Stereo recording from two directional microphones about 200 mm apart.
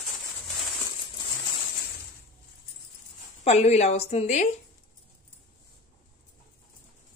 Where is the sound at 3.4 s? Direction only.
30° left (ahead or behind).